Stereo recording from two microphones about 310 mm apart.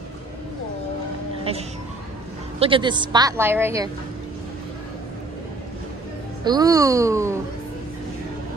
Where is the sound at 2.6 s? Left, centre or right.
Centre.